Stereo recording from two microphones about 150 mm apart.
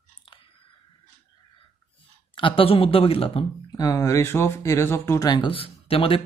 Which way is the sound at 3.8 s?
20° left (ahead or behind).